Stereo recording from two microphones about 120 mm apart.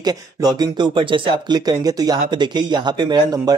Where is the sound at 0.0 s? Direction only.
35° right (ahead or behind).